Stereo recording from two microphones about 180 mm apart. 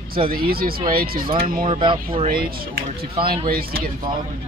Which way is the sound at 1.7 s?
30° right (ahead or behind).